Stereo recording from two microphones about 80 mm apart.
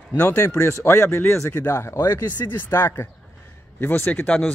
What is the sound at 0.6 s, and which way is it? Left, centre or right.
A man's voice, left.